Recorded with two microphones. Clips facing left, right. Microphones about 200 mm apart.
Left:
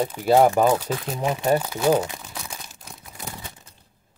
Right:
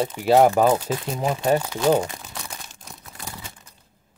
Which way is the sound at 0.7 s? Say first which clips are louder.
Right 1 dB; 10° right (ahead or behind).